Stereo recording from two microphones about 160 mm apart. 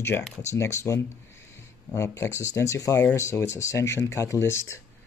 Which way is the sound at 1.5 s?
15° left (ahead or behind).